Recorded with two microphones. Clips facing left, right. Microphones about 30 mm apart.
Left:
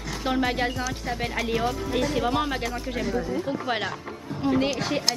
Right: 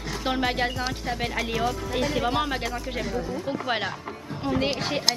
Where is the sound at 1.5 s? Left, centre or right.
Centre.